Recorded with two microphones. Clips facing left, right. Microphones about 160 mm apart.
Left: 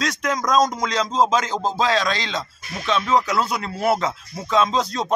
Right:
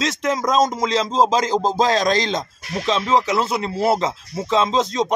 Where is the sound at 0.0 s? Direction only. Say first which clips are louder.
Right 3 dB; 25° right (ahead or behind); by 2.8 s 45° right (ahead or behind).